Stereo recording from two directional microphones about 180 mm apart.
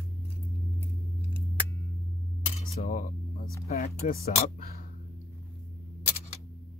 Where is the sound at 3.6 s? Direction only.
50° left (ahead or behind).